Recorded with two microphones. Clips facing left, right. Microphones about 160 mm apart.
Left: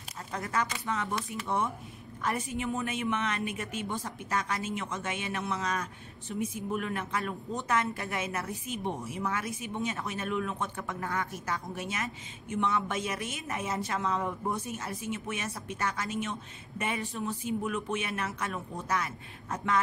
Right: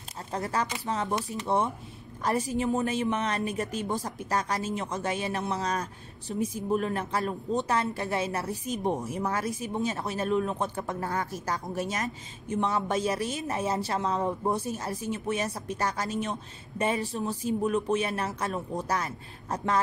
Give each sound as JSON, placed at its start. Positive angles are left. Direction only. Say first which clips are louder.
{"t": 0.3, "sound": "a woman's voice", "louder": "right 2 dB", "side_deg": -30}